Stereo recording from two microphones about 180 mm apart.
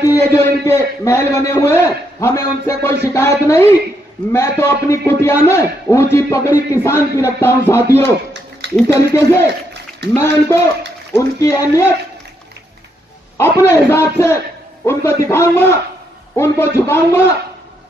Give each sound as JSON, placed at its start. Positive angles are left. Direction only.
{"t": 0.0, "sound": "a man's voice", "side_deg": 15}
{"t": 8.3, "sound": "a sound", "side_deg": -75}
{"t": 8.8, "sound": "a man's voice", "side_deg": 15}
{"t": 13.4, "sound": "a man's voice", "side_deg": 15}